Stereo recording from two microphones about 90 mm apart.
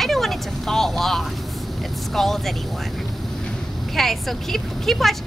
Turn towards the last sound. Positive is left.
turn(degrees=5)  # may be behind; listen again after turning